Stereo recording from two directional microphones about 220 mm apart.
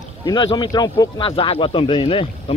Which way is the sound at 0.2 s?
20° left (ahead or behind).